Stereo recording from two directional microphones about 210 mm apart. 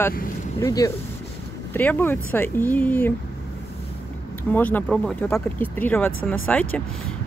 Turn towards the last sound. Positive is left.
turn(degrees=10)  # may be behind; listen again after turning